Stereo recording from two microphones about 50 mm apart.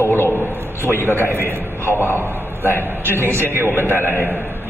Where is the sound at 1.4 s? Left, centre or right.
Right.